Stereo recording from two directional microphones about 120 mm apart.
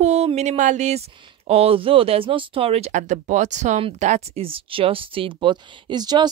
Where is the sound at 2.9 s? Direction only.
90° right.